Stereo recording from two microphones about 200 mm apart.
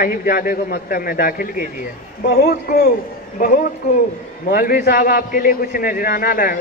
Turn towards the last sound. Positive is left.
turn(degrees=45)  # may be behind; listen again after turning